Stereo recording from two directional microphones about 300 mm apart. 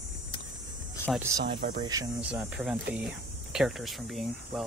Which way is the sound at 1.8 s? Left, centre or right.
Centre.